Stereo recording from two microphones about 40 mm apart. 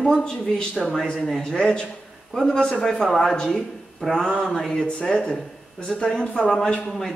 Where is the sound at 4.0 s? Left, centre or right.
Centre.